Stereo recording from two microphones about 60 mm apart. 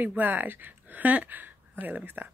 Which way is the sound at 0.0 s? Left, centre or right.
Right.